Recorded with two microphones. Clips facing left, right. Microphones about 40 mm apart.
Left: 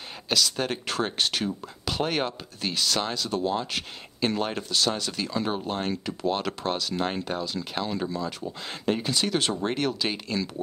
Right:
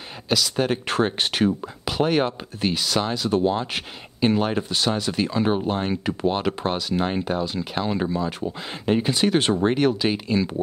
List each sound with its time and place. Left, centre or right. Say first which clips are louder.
0.3 s speech: right 4 dB; centre
1.0 s speech: right 5 dB; right
1.9 s speech: right 6 dB; centre
3.3 s speech: right 6 dB; right
9.7 s speech: right 7 dB; centre